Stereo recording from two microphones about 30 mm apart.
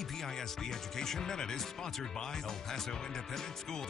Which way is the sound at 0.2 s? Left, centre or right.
Centre.